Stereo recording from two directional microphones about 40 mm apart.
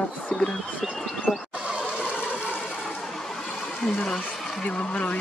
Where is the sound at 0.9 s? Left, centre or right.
Centre.